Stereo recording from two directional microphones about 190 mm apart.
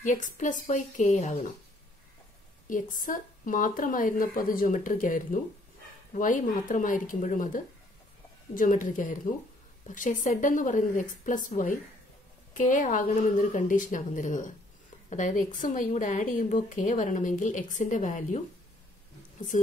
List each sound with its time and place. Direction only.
0.0 s a woman's voice: 40° left (ahead or behind)
2.7 s a woman's voice: 45° left (ahead or behind)
19.5 s a woman's voice: 40° left (ahead or behind)